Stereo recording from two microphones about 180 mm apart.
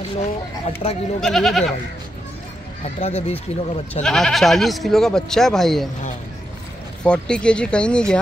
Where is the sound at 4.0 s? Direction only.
5° left (ahead or behind).